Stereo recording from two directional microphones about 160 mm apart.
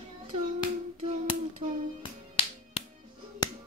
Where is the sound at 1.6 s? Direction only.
50° right (ahead or behind).